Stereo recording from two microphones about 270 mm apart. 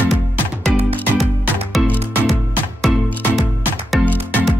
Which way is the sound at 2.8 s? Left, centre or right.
Centre.